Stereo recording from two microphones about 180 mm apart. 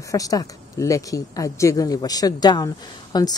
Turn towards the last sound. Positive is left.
turn(degrees=20)  # may be behind; listen again after turning